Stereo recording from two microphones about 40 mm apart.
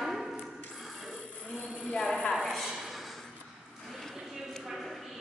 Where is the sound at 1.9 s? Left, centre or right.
Left.